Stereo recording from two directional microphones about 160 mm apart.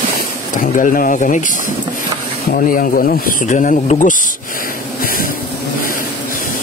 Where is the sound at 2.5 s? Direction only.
60° left (ahead or behind).